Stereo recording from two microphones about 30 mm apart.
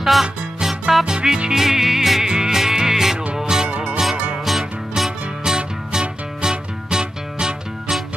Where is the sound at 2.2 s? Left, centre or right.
Right.